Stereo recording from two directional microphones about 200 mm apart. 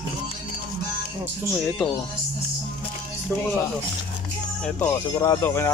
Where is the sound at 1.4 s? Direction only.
5° right (ahead or behind).